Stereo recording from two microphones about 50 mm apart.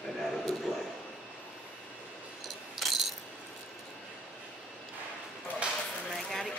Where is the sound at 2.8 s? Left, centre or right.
Centre.